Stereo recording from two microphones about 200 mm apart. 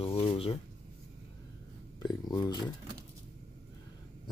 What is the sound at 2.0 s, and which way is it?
Speech, 20° left (ahead or behind).